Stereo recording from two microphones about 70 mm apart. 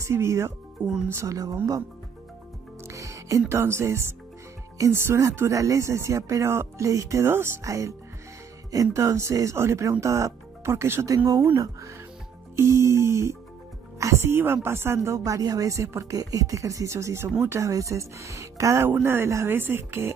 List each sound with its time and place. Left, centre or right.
0.0 s speech: right
1.3 s speech: right
2.9 s speech: right
5.3 s speech: right
7.6 s speech: right
11.1 s speech: right
11.5 s speech: right
15.1 s speech: right
18.9 s speech: right